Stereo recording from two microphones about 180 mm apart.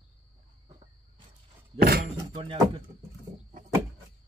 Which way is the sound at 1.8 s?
60° right (ahead or behind).